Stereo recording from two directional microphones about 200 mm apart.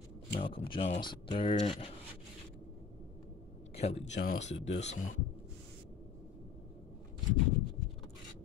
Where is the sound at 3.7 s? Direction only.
30° left (ahead or behind).